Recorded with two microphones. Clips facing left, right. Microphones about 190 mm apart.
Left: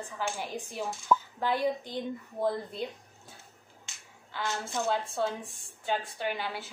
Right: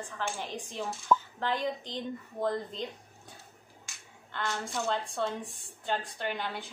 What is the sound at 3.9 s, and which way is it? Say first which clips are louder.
Finger snapping: even; 25° left (ahead or behind).